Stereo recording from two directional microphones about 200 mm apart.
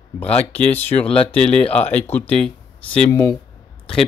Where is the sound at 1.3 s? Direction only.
5° left (ahead or behind).